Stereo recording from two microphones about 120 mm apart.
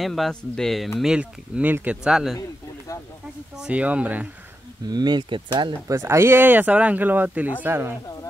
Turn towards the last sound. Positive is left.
turn(degrees=-20)  # may be behind; listen again after turning